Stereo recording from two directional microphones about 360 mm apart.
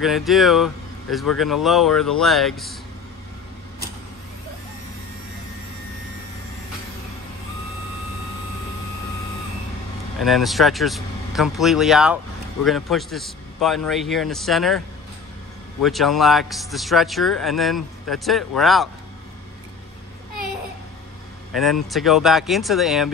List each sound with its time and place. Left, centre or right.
0.0 s a man's voice: centre
10.1 s a man's voice: centre
15.8 s a man's voice: centre
21.5 s a man's voice: centre